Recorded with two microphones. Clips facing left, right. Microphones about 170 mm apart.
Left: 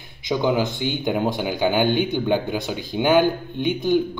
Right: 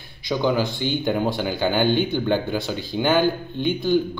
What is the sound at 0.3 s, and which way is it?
Speech, 20° left (ahead or behind).